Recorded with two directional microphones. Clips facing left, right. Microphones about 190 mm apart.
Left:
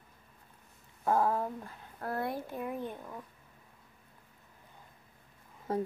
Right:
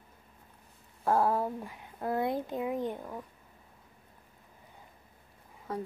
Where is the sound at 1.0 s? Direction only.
10° right (ahead or behind).